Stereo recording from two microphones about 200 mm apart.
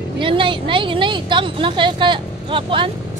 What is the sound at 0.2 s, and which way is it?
Vehicle, 25° right (ahead or behind).